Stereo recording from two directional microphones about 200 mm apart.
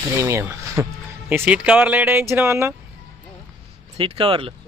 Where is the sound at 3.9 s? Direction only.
25° right (ahead or behind).